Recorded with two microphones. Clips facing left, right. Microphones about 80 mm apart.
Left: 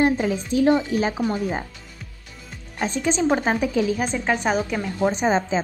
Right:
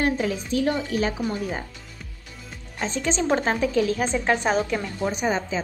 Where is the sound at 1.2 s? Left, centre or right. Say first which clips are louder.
Left 4 dB; centre.